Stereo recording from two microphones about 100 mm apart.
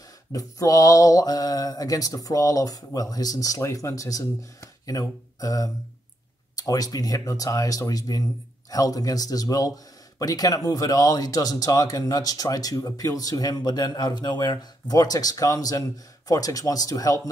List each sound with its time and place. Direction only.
0.3 s speech: 35° left (ahead or behind)